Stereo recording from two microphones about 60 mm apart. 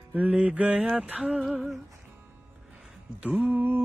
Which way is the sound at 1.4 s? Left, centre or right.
Centre.